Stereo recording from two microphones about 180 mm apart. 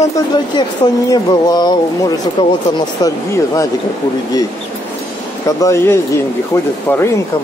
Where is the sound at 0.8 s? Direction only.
30° left (ahead or behind).